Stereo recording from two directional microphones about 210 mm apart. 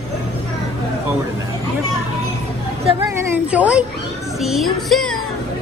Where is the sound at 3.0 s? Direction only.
5° right (ahead or behind).